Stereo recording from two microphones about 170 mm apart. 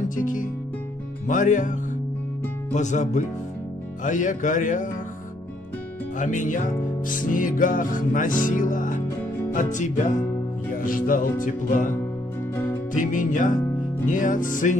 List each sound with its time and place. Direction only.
0.1 s music: 50° left (ahead or behind)
6.1 s music: 50° left (ahead or behind)